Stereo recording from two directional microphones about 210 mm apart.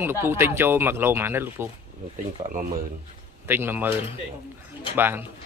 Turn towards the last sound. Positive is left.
turn(degrees=-10)  # may be behind; listen again after turning